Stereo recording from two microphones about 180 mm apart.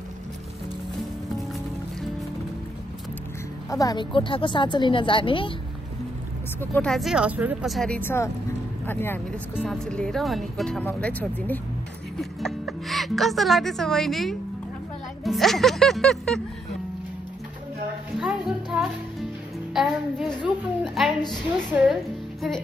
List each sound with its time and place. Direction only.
3.7 s a woman's voice: 20° left (ahead or behind)
6.6 s speech: 10° left (ahead or behind)
18.2 s music: 5° right (ahead or behind)
19.7 s speech: centre (ahead or behind)
21.0 s a sound: centre (ahead or behind)
21.7 s speech: 10° right (ahead or behind)